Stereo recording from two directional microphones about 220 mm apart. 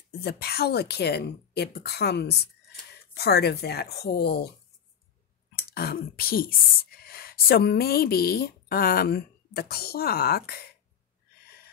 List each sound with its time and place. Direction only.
0.2 s speech: 45° left (ahead or behind)
5.7 s speech: 45° left (ahead or behind)